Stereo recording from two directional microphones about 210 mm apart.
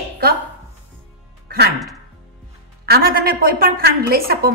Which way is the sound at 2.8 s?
45° right (ahead or behind).